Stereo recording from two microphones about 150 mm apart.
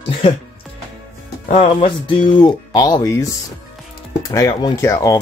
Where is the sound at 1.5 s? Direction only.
40° left (ahead or behind).